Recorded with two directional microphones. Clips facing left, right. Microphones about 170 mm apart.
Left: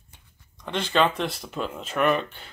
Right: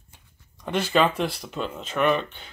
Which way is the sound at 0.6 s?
10° right (ahead or behind).